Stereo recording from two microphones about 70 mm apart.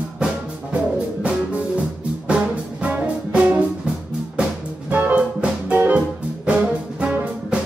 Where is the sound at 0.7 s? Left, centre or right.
Centre.